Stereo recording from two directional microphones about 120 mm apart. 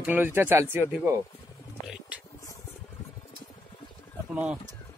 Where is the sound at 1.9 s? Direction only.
10° right (ahead or behind).